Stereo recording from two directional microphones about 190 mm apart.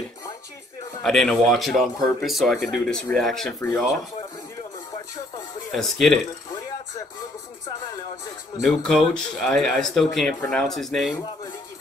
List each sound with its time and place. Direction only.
1.0 s speech: centre (ahead or behind)
5.7 s speech: centre (ahead or behind)
8.6 s speech: centre (ahead or behind)